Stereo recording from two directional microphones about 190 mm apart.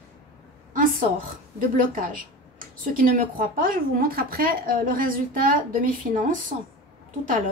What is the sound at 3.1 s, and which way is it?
Speech, 50° right (ahead or behind).